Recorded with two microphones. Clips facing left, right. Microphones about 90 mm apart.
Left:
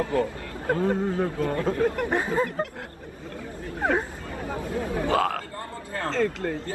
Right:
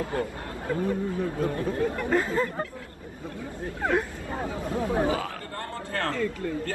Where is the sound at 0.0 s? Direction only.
55° left (ahead or behind); by 2.0 s 70° left (ahead or behind).